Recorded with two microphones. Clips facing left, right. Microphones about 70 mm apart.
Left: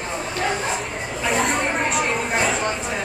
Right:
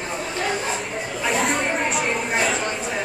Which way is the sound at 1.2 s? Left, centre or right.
Centre.